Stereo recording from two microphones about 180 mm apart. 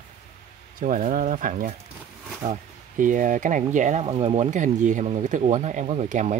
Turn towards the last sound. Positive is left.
turn(degrees=-40)  # may be behind; listen again after turning